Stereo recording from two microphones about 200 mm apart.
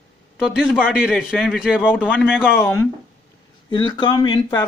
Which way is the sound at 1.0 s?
Centre (ahead or behind).